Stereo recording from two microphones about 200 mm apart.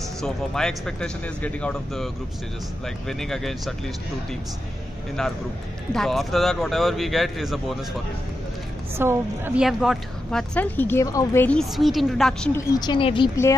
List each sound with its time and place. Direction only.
0.2 s a woman's voice: 5° left (ahead or behind)
3.1 s a woman's voice: centre (ahead or behind)
5.2 s a woman's voice: centre (ahead or behind)
8.9 s a woman's voice: 10° right (ahead or behind); by 12.6 s 5° left (ahead or behind)
12.7 s speech: 20° left (ahead or behind)